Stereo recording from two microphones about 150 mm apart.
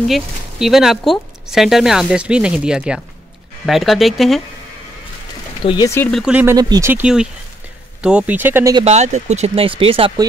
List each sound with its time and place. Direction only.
0.1 s speech: centre (ahead or behind)
5.6 s speech: 35° left (ahead or behind)
6.1 s speech: 5° right (ahead or behind)
6.4 s speech: 25° right (ahead or behind)
6.9 s speech: 5° right (ahead or behind)
8.8 s speech: 50° right (ahead or behind)